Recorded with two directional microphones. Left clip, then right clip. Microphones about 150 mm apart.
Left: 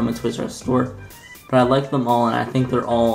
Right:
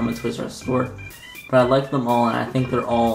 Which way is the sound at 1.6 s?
5° left (ahead or behind).